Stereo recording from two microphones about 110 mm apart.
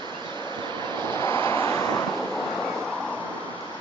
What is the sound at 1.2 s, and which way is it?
Vehicle, 25° left (ahead or behind).